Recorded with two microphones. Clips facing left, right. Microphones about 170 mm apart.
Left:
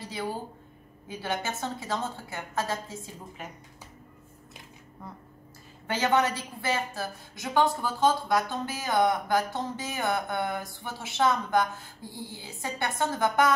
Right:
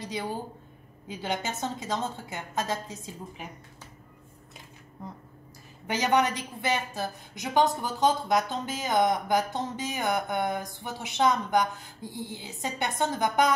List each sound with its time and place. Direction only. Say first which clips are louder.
1.0 s a woman's voice: even; 20° right (ahead or behind)
5.9 s a woman's voice: even; 15° right (ahead or behind)